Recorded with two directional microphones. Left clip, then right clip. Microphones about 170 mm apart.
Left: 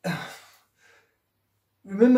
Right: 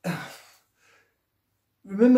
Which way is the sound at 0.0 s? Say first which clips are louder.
Left 2 dB; 5° right (ahead or behind).